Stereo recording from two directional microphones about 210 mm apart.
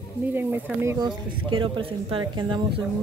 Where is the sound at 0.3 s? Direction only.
10° right (ahead or behind).